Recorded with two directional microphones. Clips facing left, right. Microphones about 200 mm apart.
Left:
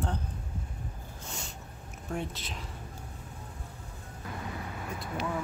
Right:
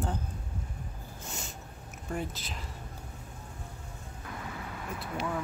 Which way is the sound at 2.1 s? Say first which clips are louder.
Even; centre (ahead or behind).